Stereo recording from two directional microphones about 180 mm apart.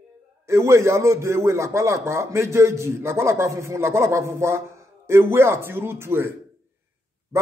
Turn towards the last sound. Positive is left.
turn(degrees=-15)  # may be behind; listen again after turning